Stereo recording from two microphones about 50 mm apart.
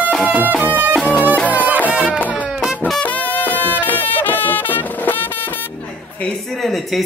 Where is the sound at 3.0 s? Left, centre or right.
Left.